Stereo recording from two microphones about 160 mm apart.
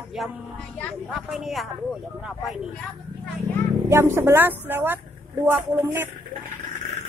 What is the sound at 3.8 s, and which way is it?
A woman's voice, 15° right (ahead or behind).